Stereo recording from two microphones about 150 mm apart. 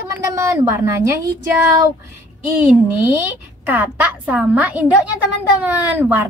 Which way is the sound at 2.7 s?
10° right (ahead or behind).